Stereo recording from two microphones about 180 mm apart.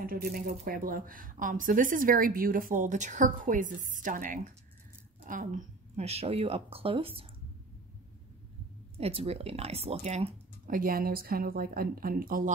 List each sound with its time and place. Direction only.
0.0 s speech: 55° right (ahead or behind); by 7.2 s 30° right (ahead or behind)
8.9 s speech: 35° right (ahead or behind); by 12.5 s 50° right (ahead or behind)